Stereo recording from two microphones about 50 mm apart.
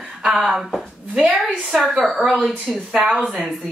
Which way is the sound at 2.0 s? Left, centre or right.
Centre.